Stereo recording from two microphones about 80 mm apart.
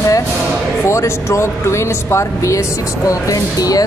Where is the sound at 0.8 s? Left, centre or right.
Left.